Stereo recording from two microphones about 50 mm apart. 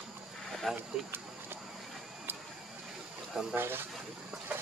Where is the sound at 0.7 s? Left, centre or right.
Centre.